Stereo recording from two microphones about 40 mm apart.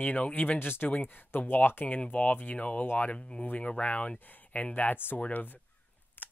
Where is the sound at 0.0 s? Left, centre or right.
Left.